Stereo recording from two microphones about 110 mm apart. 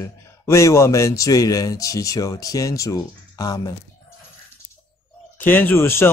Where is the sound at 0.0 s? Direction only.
25° left (ahead or behind).